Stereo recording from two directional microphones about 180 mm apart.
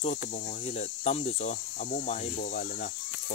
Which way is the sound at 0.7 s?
35° left (ahead or behind).